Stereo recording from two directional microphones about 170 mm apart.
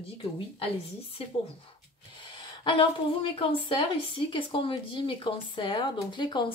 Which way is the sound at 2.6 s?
30° left (ahead or behind).